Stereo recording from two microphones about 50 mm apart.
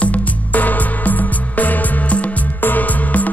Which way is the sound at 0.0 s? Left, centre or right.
Left.